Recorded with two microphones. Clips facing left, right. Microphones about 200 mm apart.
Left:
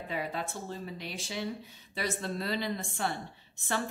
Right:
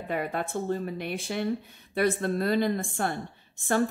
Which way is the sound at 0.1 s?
55° right (ahead or behind).